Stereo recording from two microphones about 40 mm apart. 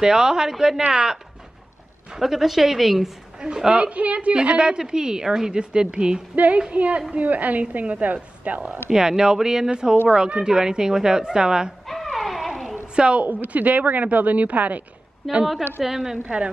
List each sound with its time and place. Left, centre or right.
0.0 s speech: centre
3.3 s a woman's voice: centre
3.8 s a woman's voice: right
6.3 s speech: right
8.9 s a woman's voice: centre
11.9 s a sound: centre
12.9 s a woman's voice: right
13.2 s speech: right
15.2 s a woman's voice: centre
15.8 s speech: centre